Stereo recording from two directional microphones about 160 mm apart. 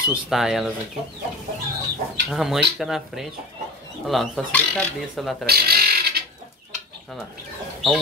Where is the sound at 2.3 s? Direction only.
Centre (ahead or behind).